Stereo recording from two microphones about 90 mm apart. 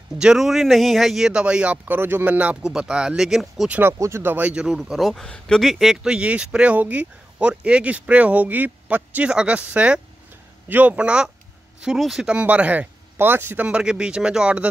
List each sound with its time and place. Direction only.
0.2 s speech: 5° right (ahead or behind)
3.6 s speech: 15° right (ahead or behind)
4.0 s speech: 25° right (ahead or behind)
4.7 s speech: centre (ahead or behind); by 13.7 s 25° right (ahead or behind)
13.7 s speech: 10° right (ahead or behind)